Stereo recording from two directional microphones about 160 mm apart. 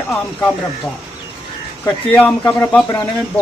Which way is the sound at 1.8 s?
10° left (ahead or behind).